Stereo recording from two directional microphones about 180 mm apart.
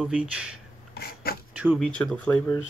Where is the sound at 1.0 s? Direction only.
60° left (ahead or behind).